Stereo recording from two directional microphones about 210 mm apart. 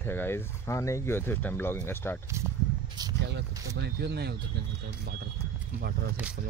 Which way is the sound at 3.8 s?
50° right (ahead or behind).